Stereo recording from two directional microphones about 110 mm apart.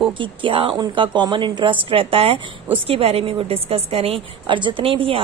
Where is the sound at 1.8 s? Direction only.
55° right (ahead or behind).